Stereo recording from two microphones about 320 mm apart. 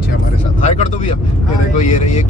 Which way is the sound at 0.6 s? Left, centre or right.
Left.